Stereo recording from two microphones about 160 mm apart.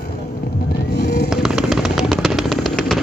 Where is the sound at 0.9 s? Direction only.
90° left.